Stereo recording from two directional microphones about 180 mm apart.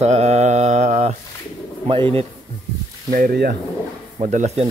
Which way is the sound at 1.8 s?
30° right (ahead or behind).